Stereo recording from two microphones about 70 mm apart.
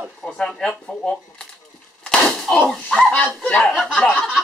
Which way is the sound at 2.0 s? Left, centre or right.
Centre.